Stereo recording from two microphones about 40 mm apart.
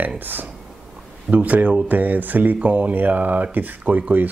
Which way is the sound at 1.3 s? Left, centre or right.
Right.